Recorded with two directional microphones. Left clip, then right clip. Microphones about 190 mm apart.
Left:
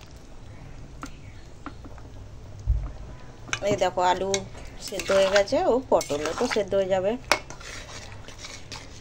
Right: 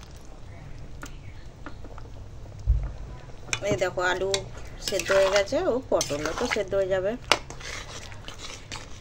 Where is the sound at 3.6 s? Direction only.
15° left (ahead or behind).